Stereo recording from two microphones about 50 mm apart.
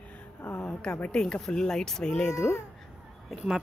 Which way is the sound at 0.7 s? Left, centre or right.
Centre.